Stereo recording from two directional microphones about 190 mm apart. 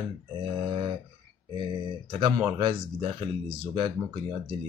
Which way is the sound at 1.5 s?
25° right (ahead or behind).